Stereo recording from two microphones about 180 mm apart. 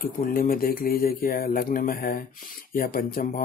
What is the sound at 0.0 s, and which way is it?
Mantra, 55° left (ahead or behind).